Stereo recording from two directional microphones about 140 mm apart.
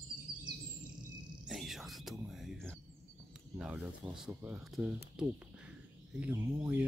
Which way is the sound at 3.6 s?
5° right (ahead or behind).